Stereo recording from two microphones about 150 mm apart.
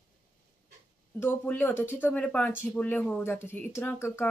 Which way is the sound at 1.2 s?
15° left (ahead or behind).